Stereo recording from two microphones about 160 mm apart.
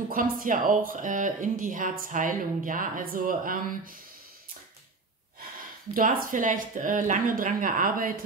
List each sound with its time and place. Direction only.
0.1 s speech: 60° right (ahead or behind)
5.9 s speech: 60° right (ahead or behind)